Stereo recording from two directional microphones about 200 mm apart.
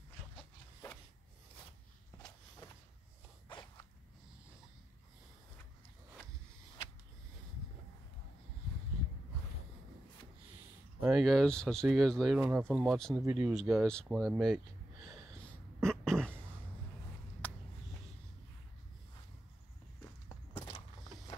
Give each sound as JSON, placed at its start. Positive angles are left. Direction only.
{"t": 3.4, "sound": "zipper", "side_deg": 20}
{"t": 11.0, "sound": "speech", "side_deg": 0}
{"t": 15.8, "sound": "a sound", "side_deg": 5}